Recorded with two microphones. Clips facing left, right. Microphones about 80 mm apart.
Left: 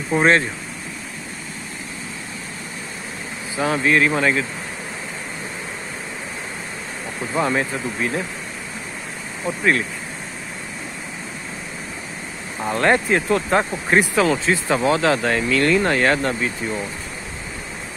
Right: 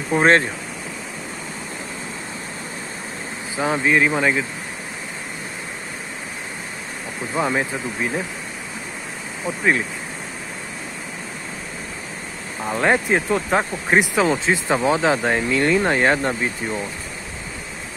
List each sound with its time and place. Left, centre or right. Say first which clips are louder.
3.5 s speech: even; centre
7.3 s speech: left 1 dB; centre
12.6 s speech: left 1 dB; centre
13.9 s speech: even; centre